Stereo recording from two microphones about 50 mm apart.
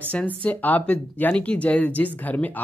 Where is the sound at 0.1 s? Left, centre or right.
Left.